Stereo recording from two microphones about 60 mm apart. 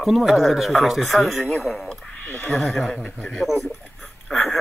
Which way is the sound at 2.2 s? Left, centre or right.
Left.